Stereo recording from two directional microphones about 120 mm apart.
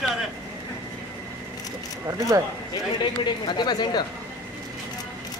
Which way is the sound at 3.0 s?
40° left (ahead or behind).